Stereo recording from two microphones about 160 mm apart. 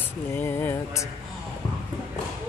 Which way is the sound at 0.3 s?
15° left (ahead or behind).